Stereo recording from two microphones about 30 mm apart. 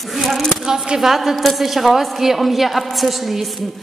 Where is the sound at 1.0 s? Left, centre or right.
Centre.